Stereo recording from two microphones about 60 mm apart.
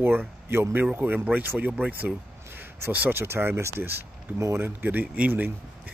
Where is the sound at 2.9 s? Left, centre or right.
Right.